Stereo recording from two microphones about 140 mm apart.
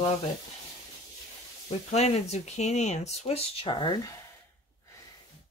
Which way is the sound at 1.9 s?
50° left (ahead or behind).